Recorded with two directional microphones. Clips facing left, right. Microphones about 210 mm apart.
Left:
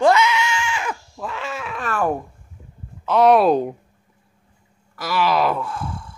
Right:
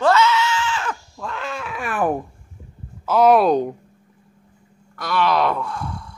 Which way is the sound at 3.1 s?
Centre (ahead or behind).